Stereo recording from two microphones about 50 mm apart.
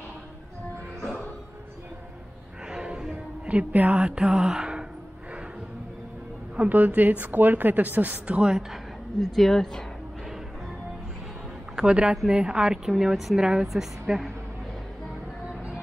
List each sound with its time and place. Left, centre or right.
2.7 s music: centre
3.1 s music: right
4.2 s mantra: centre
6.5 s a woman's voice: right
8.3 s a woman's voice: centre
9.2 s a woman's voice: centre
11.7 s a woman's voice: centre
13.0 s speech: centre
13.4 s a woman's voice: centre